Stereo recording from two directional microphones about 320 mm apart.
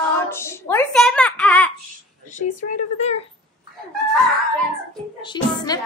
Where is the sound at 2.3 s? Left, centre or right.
Left.